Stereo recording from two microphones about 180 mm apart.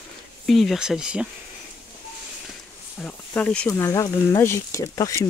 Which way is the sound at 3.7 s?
15° left (ahead or behind).